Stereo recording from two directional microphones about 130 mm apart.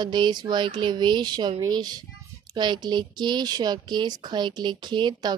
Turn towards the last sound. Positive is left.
turn(degrees=-35)  # may be behind; listen again after turning